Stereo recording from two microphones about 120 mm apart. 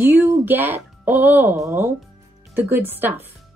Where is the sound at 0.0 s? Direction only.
15° right (ahead or behind).